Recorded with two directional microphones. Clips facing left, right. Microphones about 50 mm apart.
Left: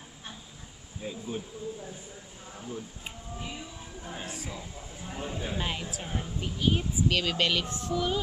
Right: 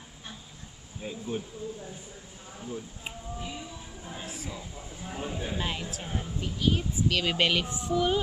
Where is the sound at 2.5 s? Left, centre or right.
Centre.